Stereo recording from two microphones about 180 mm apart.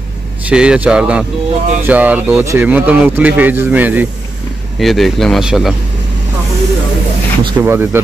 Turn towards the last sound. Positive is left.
turn(degrees=-10)  # may be behind; listen again after turning